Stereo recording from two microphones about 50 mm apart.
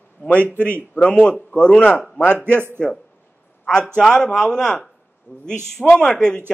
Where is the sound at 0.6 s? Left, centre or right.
Right.